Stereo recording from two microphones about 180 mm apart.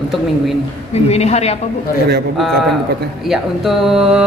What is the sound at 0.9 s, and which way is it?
Speech, 35° left (ahead or behind).